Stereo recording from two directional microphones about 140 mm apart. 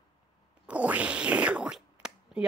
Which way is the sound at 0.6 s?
10° right (ahead or behind).